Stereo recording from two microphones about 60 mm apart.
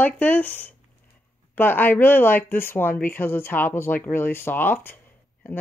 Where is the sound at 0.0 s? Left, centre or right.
Left.